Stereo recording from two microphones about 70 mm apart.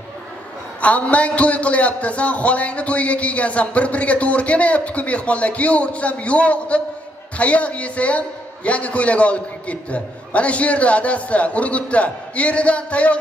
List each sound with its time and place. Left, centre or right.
0.7 s a man's voice: centre